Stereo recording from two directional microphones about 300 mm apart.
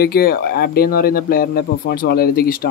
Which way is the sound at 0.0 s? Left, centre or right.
Left.